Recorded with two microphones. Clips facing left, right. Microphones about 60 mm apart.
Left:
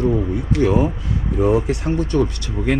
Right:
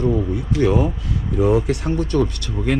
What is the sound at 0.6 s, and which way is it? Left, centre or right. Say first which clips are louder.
Speech: left 1 dB; centre.